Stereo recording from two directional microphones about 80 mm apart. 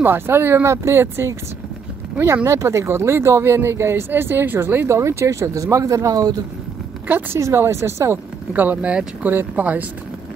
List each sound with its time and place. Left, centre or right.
0.0 s speech: right
2.4 s speech: right
7.3 s speech: right
8.5 s speech: centre